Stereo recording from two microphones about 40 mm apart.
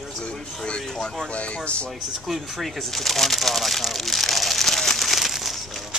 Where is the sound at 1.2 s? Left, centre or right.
Left.